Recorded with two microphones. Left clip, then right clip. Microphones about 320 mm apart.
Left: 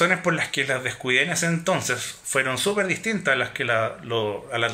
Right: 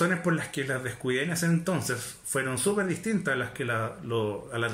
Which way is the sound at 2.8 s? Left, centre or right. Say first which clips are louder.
Left 6 dB; left.